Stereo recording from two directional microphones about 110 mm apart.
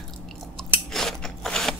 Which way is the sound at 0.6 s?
5° left (ahead or behind).